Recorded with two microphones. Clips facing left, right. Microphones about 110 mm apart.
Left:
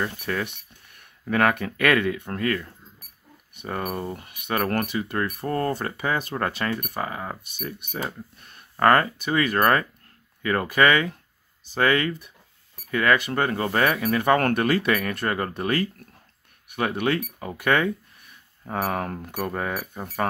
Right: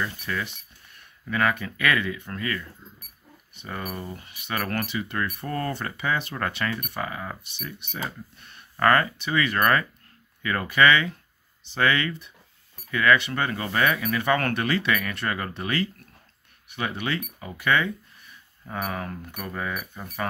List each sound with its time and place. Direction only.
0.2 s speech: 55° left (ahead or behind)
6.3 s speech: 30° left (ahead or behind)
7.4 s speech: 45° left (ahead or behind)
8.5 s speech: 35° left (ahead or behind)
14.1 s speech: 45° left (ahead or behind)
19.7 s speech: 35° left (ahead or behind)